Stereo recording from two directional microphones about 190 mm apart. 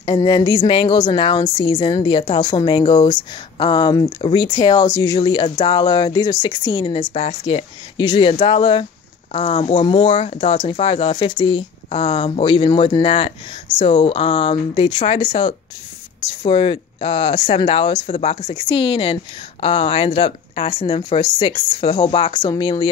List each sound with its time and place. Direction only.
0.0 s a woman's voice: 25° left (ahead or behind)